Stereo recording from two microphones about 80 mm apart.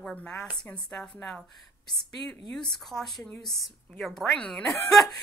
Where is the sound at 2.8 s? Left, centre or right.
Centre.